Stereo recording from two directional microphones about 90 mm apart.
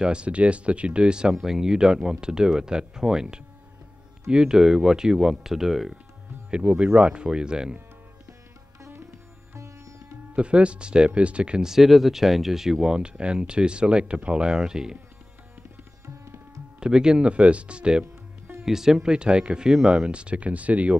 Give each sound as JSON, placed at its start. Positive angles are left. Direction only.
{"t": 0.0, "sound": "speech", "side_deg": -10}
{"t": 9.6, "sound": "sitar", "side_deg": -35}
{"t": 10.3, "sound": "speech", "side_deg": -10}
{"t": 16.8, "sound": "speech", "side_deg": -10}